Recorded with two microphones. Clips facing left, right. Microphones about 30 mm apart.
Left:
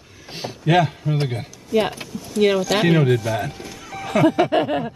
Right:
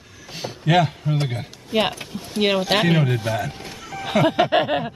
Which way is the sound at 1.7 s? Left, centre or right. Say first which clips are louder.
Left 1 dB; right.